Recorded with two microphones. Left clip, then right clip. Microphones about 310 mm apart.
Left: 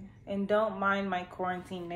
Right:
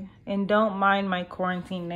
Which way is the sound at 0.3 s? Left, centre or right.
Right.